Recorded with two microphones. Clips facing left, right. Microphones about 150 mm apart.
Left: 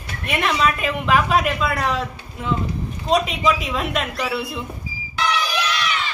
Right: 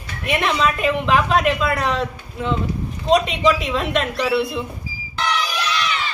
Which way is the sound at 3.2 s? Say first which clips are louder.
Right 3 dB; 5° left (ahead or behind).